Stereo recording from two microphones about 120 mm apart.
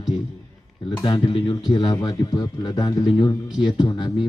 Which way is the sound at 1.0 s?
45° left (ahead or behind).